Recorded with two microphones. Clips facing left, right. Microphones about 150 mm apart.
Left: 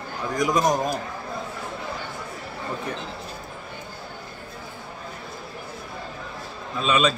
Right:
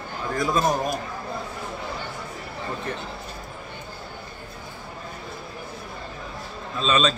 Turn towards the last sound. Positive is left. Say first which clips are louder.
# left 1 dB
turn(degrees=10)  # may be behind; listen again after turning